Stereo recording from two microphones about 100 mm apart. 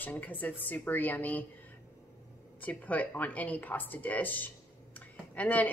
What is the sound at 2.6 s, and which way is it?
Speech, 15° left (ahead or behind).